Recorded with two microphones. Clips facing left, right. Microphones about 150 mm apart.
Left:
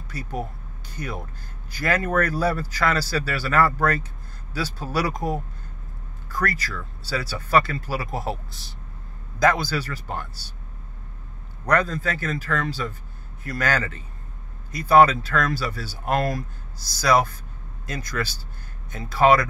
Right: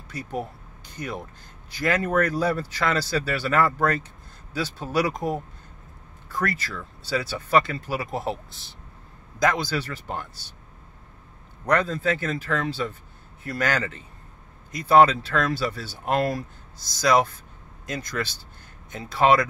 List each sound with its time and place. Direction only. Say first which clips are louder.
0.1 s speech: even; 25° right (ahead or behind)
6.3 s speech: left 1 dB; 25° right (ahead or behind)
9.4 s speech: left 2 dB; 20° right (ahead or behind)
11.6 s speech: even; 25° right (ahead or behind)